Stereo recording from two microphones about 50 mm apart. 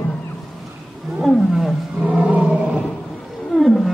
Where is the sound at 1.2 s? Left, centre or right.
Centre.